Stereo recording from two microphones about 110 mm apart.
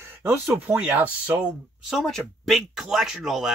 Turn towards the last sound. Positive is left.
turn(degrees=-5)  # may be behind; listen again after turning